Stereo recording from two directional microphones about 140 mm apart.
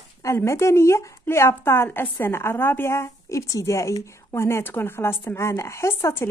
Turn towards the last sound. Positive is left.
turn(degrees=20)  # may be behind; listen again after turning